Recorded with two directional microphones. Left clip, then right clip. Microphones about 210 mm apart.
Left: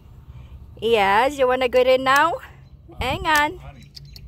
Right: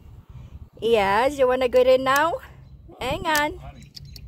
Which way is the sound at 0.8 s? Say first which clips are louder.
Left 2 dB; 10° right (ahead or behind).